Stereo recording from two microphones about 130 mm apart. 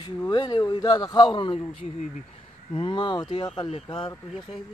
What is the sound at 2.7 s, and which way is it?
Speech, 40° left (ahead or behind).